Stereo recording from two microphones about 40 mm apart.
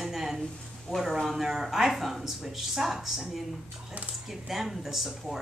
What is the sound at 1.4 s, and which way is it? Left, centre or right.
Speech, centre.